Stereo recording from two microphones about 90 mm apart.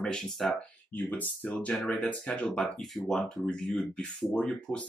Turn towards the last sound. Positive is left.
turn(degrees=10)  # may be behind; listen again after turning